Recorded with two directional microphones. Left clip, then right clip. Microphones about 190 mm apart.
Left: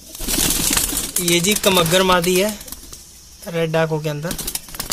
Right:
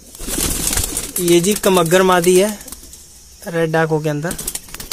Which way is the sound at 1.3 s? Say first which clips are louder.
Right 2 dB; 40° right (ahead or behind).